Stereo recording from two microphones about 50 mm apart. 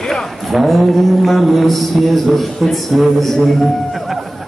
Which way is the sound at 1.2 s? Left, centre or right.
Centre.